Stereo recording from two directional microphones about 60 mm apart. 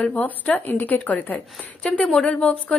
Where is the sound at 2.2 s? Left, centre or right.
Centre.